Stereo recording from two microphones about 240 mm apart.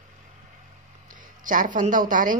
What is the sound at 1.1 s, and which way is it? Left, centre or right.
Speech, right.